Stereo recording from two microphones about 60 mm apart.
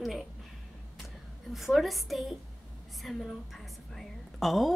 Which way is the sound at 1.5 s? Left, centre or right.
Centre.